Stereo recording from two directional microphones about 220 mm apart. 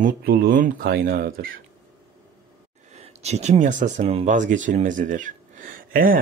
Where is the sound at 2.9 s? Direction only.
30° right (ahead or behind).